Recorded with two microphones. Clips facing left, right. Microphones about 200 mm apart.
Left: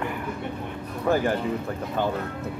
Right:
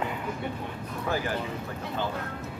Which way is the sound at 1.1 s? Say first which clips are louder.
Left 7 dB; 50° left (ahead or behind).